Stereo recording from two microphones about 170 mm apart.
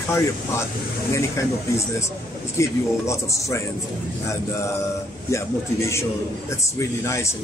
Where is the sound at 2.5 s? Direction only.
15° left (ahead or behind).